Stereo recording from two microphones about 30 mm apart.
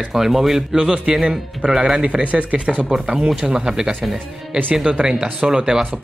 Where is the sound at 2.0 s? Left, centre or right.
Right.